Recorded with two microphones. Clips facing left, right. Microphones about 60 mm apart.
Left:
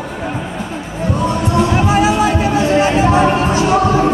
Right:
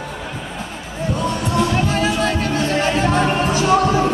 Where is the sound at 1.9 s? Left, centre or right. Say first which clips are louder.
Left 6 dB; centre.